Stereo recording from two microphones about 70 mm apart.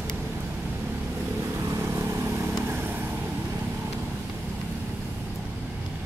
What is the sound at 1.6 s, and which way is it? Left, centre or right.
Vehicle, right.